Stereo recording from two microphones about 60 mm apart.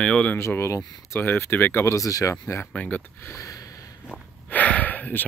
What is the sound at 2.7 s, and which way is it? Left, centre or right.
Speech, left.